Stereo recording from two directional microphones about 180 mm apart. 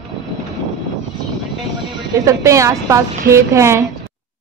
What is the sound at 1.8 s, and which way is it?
A woman's voice, 15° right (ahead or behind).